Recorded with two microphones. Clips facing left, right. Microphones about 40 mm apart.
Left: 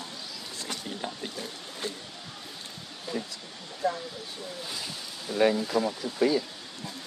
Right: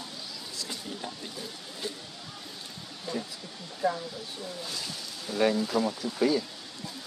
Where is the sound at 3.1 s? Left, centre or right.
Centre.